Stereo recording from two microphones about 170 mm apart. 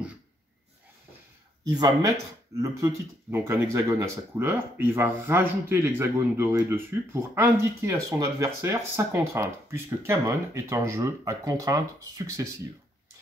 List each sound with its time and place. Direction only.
1.7 s speech: 20° right (ahead or behind)